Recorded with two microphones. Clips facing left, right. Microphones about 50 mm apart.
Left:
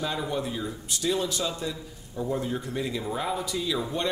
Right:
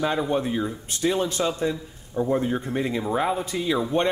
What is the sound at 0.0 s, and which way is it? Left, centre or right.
Speech, right.